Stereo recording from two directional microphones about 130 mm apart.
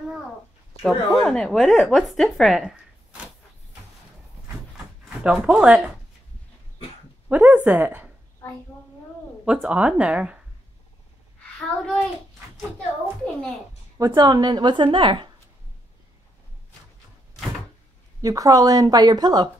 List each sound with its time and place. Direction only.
0.8 s speech: 5° left (ahead or behind)
5.2 s speech: 5° right (ahead or behind)
7.2 s speech: 10° right (ahead or behind)
9.4 s speech: 10° right (ahead or behind)
13.9 s a woman's voice: 25° right (ahead or behind)
18.2 s speech: 25° right (ahead or behind)